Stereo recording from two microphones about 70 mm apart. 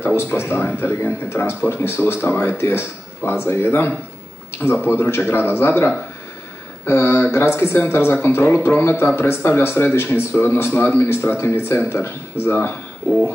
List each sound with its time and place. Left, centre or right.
0.0 s speech: left